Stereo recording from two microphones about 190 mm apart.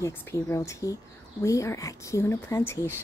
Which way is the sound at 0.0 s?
15° left (ahead or behind).